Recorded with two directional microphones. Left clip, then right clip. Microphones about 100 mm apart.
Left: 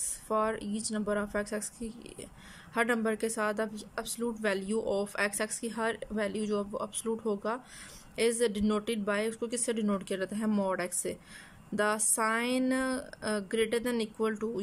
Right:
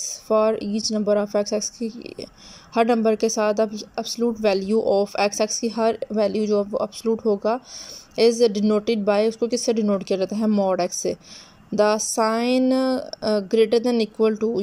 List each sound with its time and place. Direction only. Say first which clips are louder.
0.3 s speech: right 11 dB; 30° right (ahead or behind)